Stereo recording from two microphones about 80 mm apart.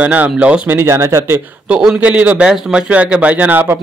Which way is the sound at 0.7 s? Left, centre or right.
Right.